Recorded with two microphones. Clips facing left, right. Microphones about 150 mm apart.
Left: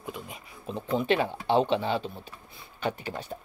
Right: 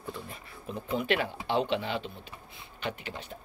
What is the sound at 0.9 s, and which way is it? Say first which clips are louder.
Speech: left 4 dB; 30° left (ahead or behind).